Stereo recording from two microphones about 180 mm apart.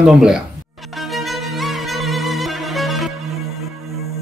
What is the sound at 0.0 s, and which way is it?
Speech, 5° right (ahead or behind).